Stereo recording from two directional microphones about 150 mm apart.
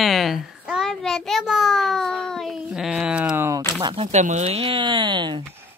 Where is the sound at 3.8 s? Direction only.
35° right (ahead or behind).